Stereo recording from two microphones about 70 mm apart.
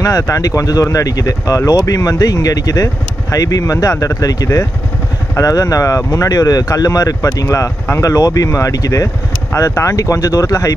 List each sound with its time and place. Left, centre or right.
0.0 s speech: left